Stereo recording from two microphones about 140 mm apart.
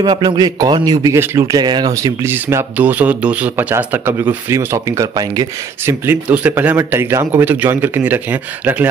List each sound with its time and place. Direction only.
0.0 s a man's voice: 30° right (ahead or behind)
2.2 s speech: 15° right (ahead or behind)
5.9 s speech: 15° right (ahead or behind)